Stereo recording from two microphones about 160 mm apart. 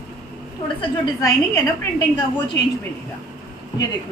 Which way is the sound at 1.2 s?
20° left (ahead or behind).